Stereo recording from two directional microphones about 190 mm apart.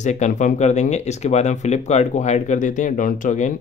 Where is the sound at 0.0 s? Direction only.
40° left (ahead or behind).